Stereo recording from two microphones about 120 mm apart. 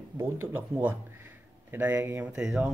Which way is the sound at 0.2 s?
15° right (ahead or behind).